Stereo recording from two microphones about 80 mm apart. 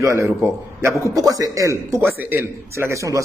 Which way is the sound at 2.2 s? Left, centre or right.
Right.